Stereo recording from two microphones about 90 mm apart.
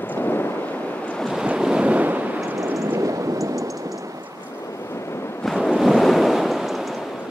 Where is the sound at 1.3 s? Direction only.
10° right (ahead or behind).